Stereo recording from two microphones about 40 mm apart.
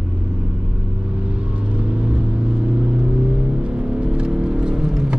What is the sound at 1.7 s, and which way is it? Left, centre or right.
Vehicle, right.